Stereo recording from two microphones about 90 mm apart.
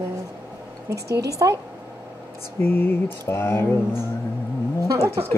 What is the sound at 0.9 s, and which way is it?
Speech, 40° right (ahead or behind).